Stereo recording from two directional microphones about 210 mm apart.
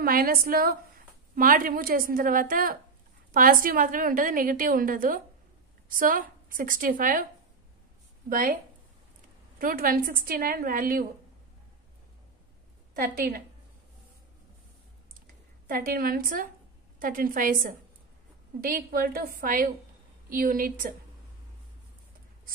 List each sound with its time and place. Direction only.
0.0 s a woman's voice: 45° right (ahead or behind)
8.3 s a woman's voice: 40° right (ahead or behind)
9.6 s a woman's voice: 40° right (ahead or behind)
12.9 s a woman's voice: 45° right (ahead or behind)
15.6 s a woman's voice: 45° right (ahead or behind)